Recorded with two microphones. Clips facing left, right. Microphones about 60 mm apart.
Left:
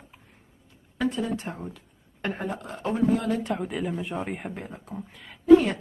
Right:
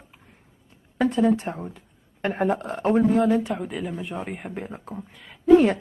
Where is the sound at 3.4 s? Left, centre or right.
Centre.